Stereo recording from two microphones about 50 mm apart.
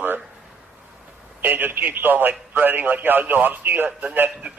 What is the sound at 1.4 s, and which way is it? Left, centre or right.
A man's voice, right.